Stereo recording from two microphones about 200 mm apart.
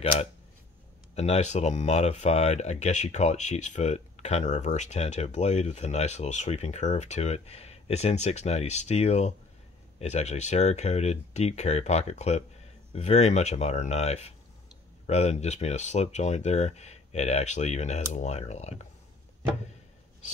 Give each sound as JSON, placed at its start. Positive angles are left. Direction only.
{"t": 0.0, "sound": "speech", "side_deg": 30}